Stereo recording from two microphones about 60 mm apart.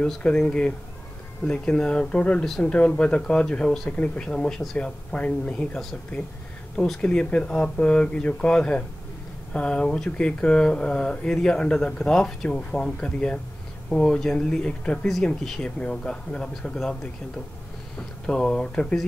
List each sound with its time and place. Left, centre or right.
0.0 s speech: centre
3.9 s speech: left
4.3 s speech: centre
6.8 s speech: centre
15.4 s speech: centre
18.2 s speech: centre